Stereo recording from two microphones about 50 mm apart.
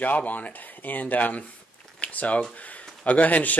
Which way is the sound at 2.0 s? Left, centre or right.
Left.